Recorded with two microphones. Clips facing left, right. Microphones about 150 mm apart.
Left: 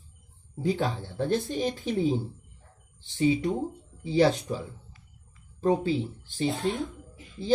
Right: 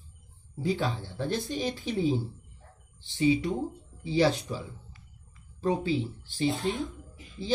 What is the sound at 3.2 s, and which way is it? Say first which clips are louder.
Speech: left 1 dB; 45° left (ahead or behind).